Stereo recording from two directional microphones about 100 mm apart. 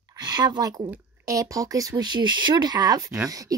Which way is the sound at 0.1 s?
45° right (ahead or behind).